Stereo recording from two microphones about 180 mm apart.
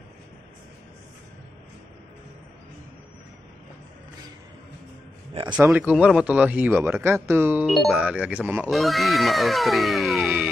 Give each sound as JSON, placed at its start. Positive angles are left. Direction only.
{"t": 5.3, "sound": "a man's voice", "side_deg": -25}
{"t": 5.6, "sound": "speech", "side_deg": -10}
{"t": 7.6, "sound": "speech", "side_deg": 0}